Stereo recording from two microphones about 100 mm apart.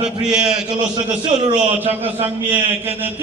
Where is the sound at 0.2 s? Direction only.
5° right (ahead or behind).